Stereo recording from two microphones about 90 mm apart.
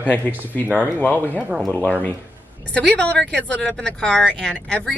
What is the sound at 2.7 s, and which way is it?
A woman's voice, 15° left (ahead or behind).